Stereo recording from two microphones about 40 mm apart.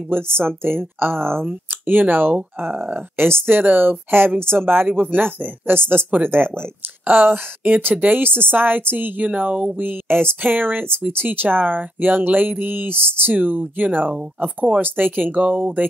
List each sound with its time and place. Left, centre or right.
0.1 s speech: right
1.7 s speech: right
6.0 s speech: right
6.3 s speech: right
7.1 s speech: right
9.8 s speech: right
12.9 s speech: left
13.3 s speech: right
15.4 s speech: right